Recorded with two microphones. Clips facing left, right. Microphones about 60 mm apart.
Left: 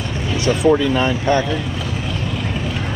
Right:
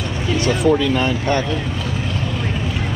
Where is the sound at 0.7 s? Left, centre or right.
Left.